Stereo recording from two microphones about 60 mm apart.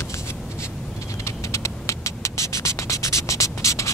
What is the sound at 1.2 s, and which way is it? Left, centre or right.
Music, left.